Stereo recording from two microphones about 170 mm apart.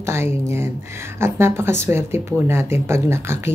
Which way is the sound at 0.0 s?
15° right (ahead or behind).